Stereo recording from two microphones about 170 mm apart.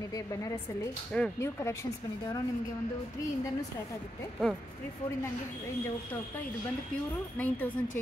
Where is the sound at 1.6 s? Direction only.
15° left (ahead or behind).